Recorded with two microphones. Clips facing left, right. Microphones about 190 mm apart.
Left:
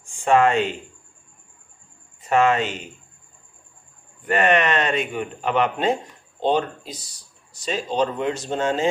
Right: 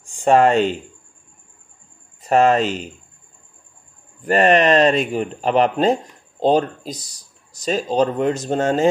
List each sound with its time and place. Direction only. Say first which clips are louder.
0.0 s speech: right 3 dB; 35° right (ahead or behind)
2.2 s speech: right 4 dB; 35° right (ahead or behind)
4.2 s speech: right 5 dB; 35° right (ahead or behind)